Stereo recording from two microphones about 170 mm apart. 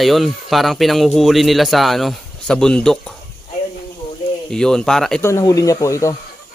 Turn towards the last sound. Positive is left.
turn(degrees=20)  # may be behind; listen again after turning